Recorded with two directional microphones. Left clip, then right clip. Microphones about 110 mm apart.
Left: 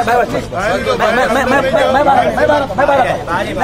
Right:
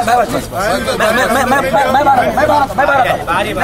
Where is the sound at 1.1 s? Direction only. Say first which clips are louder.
Even; 5° right (ahead or behind).